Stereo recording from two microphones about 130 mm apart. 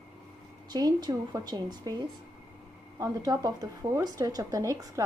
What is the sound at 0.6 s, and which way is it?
A woman's voice, 30° right (ahead or behind).